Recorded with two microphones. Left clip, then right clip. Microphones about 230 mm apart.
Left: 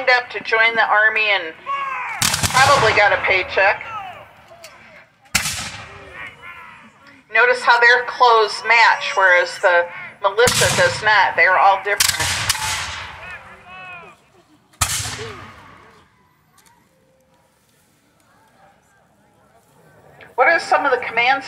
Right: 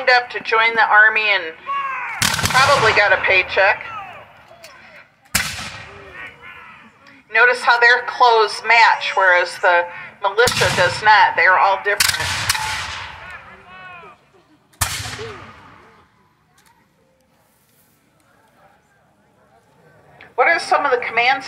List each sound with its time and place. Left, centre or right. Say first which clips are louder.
0.0 s speech: right 1 dB; right
1.7 s a sound: even; centre
2.5 s speech: even; right
4.6 s a sound: even; centre
6.1 s a sound: left 2 dB; left
7.1 s speech: right 1 dB; right
12.0 s gunshot: even; centre
13.7 s boat: left 4 dB; centre
14.8 s whip: left 1 dB; centre
20.3 s speech: even; right